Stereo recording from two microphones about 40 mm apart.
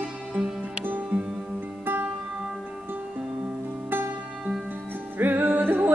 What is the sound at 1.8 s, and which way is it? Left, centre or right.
Music, right.